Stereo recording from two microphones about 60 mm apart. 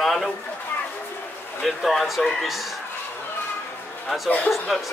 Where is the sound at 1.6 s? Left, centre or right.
Centre.